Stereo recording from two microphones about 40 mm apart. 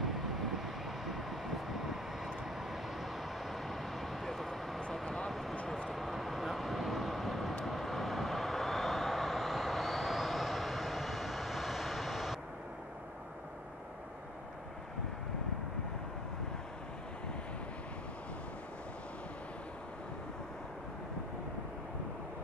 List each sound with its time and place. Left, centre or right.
0.0 s vehicle: centre
5.0 s vehicle: centre
5.3 s vehicle: centre